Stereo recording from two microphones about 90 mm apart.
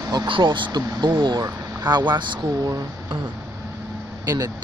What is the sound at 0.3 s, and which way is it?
A man's voice, 60° right (ahead or behind).